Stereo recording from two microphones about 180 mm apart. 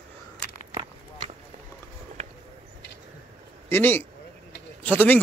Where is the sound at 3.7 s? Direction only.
10° left (ahead or behind).